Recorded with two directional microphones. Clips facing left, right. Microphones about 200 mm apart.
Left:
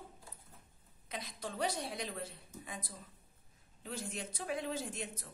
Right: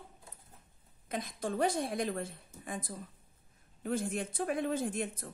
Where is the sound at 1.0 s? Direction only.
50° right (ahead or behind).